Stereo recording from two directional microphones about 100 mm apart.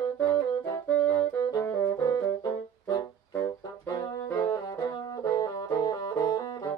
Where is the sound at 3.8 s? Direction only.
40° left (ahead or behind).